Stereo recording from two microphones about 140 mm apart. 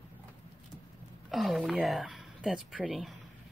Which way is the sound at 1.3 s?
Centre (ahead or behind).